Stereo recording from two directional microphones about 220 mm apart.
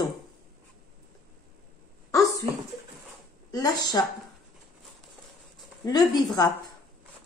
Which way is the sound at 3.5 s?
20° left (ahead or behind).